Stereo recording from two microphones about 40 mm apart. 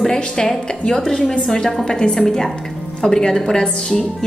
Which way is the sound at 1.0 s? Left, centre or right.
Centre.